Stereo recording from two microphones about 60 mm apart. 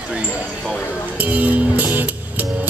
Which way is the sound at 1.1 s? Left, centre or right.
Right.